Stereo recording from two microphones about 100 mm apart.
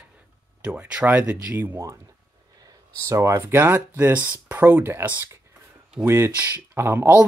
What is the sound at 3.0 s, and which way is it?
Speech, 30° right (ahead or behind).